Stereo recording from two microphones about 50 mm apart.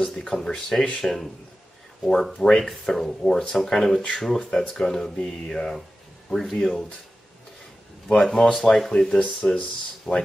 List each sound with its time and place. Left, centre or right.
0.2 s speech: centre
8.1 s speech: centre
9.4 s speech: left
10.1 s speech: centre